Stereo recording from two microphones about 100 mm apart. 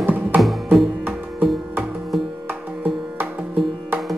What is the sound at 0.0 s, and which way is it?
Music, 15° right (ahead or behind).